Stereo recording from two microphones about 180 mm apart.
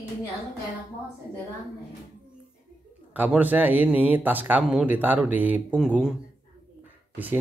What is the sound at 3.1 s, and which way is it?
Speech, 10° right (ahead or behind).